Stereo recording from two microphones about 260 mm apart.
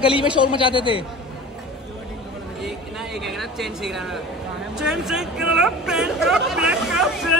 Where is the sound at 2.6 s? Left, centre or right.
Centre.